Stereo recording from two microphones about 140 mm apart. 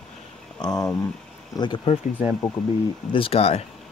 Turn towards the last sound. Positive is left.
turn(degrees=45)  # may be behind; listen again after turning